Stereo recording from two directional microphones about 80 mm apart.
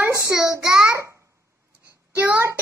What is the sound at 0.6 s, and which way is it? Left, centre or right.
Speech, centre.